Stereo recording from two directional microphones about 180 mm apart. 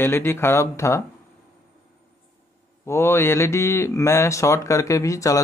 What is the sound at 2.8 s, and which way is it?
A man's voice, 15° left (ahead or behind).